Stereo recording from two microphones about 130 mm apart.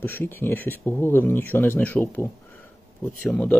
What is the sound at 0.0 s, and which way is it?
Speech, 15° left (ahead or behind).